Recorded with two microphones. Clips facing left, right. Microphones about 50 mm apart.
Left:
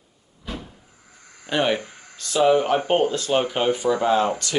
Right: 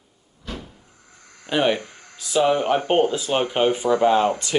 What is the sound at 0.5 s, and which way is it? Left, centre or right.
Cupboard open or close, centre.